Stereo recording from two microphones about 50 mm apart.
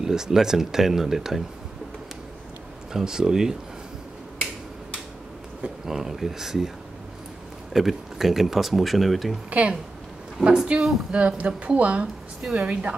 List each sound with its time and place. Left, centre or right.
0.0 s speech: centre
2.9 s speech: centre
5.9 s speech: centre
7.7 s speech: centre
9.5 s speech: right; by 11.0 s centre
11.1 s speech: right